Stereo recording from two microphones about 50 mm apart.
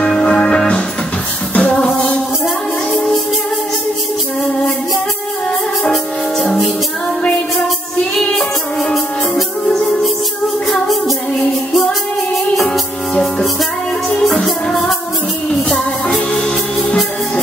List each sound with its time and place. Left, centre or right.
0.0 s music: centre
1.6 s music: centre
8.2 s music: centre
10.7 s music: centre
12.5 s music: centre
14.2 s music: centre